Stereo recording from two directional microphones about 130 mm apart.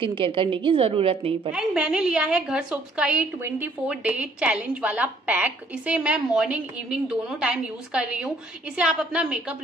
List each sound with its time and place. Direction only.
0.0 s a woman's voice: 40° right (ahead or behind)
1.5 s a woman's voice: 5° right (ahead or behind)